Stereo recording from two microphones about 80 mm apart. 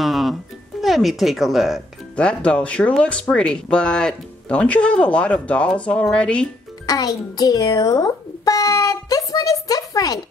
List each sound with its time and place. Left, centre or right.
0.0 s speech: centre
2.1 s speech: centre
6.9 s a sound: left